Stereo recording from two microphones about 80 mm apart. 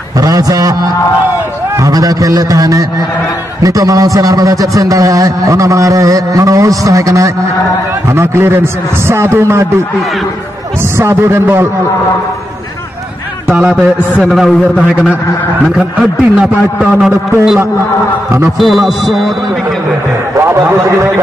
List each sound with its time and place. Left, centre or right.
0.2 s a man's voice: right
1.8 s a man's voice: right
8.1 s a man's voice: right
11.0 s a man's voice: right
14.2 s music: centre
15.8 s a man's voice: centre
18.6 s music: centre